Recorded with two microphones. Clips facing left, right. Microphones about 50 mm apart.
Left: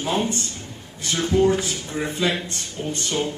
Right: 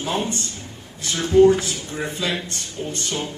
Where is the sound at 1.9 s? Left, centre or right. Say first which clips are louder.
Left 2 dB; centre.